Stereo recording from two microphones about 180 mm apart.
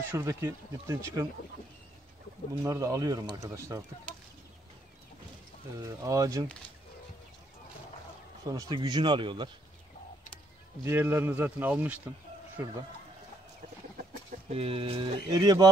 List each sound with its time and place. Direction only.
0.1 s speech: 15° right (ahead or behind)
2.6 s speech: 15° right (ahead or behind)
5.8 s speech: 20° right (ahead or behind)
8.5 s speech: 20° right (ahead or behind)
10.8 s speech: 15° right (ahead or behind)
14.5 s speech: 35° right (ahead or behind)